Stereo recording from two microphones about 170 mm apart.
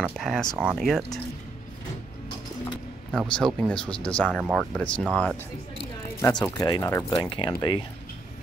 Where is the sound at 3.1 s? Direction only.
5° left (ahead or behind).